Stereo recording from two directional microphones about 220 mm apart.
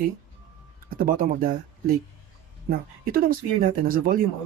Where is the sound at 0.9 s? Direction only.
40° right (ahead or behind).